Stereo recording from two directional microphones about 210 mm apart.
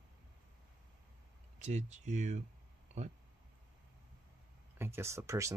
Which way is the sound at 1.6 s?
35° right (ahead or behind).